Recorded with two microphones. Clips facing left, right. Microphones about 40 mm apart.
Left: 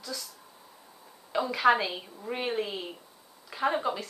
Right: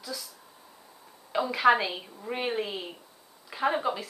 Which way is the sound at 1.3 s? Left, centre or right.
Centre.